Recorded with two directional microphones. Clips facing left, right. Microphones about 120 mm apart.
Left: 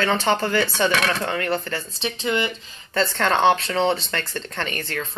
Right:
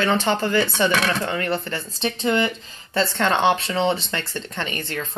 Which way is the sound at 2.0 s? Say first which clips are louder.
Right 3 dB; 45° right (ahead or behind).